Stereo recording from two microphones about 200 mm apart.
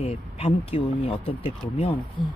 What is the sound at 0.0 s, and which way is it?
Speech, 30° left (ahead or behind).